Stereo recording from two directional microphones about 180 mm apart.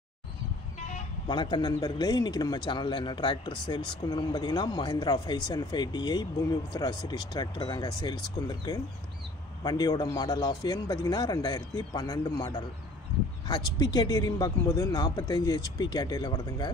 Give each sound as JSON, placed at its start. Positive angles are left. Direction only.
{"t": 1.2, "sound": "a man's voice", "side_deg": 25}